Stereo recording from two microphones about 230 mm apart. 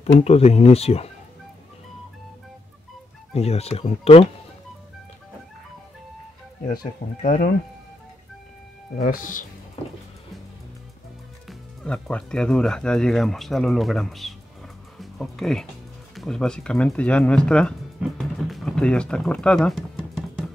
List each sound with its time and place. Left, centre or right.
0.0 s speech: left
3.3 s speech: left
7.2 s speech: left
8.9 s speech: left
11.4 s speech: centre